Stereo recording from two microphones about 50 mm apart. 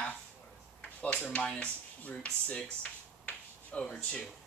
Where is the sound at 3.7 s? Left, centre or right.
Left.